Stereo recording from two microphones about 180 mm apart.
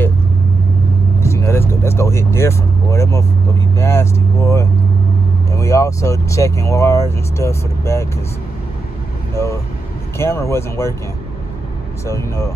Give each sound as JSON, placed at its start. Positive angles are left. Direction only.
{"t": 1.2, "sound": "vehicle", "side_deg": 15}
{"t": 3.7, "sound": "speech", "side_deg": 15}
{"t": 9.3, "sound": "speech", "side_deg": 15}
{"t": 12.1, "sound": "speech", "side_deg": 15}